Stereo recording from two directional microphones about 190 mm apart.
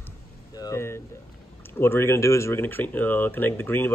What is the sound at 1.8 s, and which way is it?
Speech, 15° left (ahead or behind).